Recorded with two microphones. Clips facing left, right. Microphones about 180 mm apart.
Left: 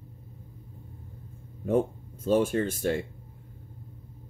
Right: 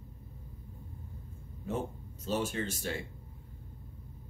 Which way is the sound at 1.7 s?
55° left (ahead or behind).